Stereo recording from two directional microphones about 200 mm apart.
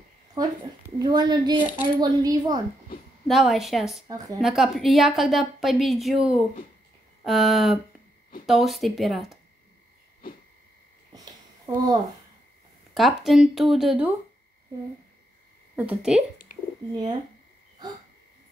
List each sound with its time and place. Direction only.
0.4 s a woman's voice: 20° right (ahead or behind)
3.3 s a woman's voice: centre (ahead or behind)
11.1 s a sound: 20° right (ahead or behind)
12.9 s a woman's voice: centre (ahead or behind)
15.7 s speech: 10° right (ahead or behind)
17.8 s a woman's voice: 20° right (ahead or behind)